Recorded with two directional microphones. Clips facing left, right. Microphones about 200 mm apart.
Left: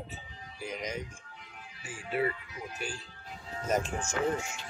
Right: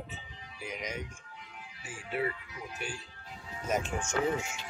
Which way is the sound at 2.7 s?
35° left (ahead or behind).